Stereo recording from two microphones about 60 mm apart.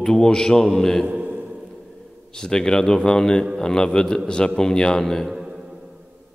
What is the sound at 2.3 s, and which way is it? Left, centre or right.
A man's voice, centre.